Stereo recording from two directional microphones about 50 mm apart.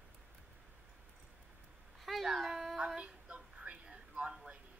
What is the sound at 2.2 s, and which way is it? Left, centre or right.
Speech, centre.